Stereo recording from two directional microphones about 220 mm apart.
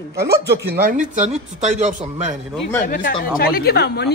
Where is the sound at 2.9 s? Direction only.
40° left (ahead or behind).